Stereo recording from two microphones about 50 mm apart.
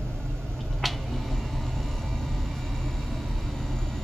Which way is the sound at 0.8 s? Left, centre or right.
Centre.